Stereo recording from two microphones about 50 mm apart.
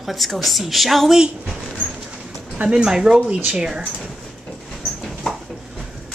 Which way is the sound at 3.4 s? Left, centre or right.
Right.